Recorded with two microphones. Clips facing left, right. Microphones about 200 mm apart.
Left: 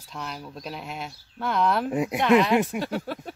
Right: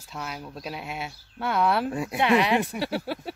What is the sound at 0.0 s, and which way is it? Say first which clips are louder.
Speech: even; 5° right (ahead or behind).